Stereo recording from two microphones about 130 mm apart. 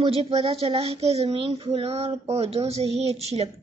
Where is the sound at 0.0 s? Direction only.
50° right (ahead or behind).